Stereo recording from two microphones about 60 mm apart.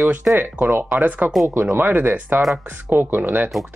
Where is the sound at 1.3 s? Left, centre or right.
Centre.